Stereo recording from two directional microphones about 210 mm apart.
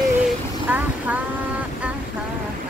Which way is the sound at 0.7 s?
5° right (ahead or behind).